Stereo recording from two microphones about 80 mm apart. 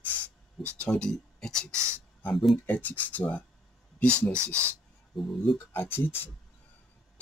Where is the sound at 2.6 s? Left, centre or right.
Left.